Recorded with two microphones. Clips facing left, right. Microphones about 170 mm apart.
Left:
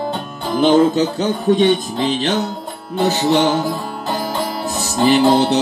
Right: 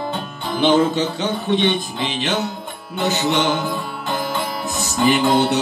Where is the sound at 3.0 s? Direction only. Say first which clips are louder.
Left 4 dB; 35° left (ahead or behind).